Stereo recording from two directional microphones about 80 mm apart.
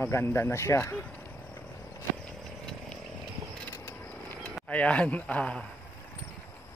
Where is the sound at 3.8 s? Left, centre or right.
Left.